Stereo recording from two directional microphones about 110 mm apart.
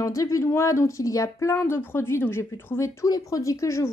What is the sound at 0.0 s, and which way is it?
Speech, 30° left (ahead or behind).